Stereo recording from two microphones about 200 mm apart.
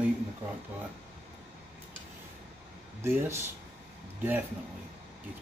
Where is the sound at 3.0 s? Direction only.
10° right (ahead or behind).